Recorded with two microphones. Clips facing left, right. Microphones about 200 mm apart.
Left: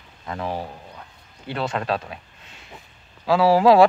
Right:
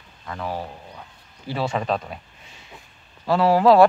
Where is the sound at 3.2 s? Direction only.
5° left (ahead or behind).